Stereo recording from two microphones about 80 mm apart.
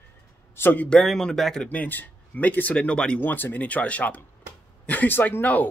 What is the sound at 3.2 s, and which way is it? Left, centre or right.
A man's voice, left.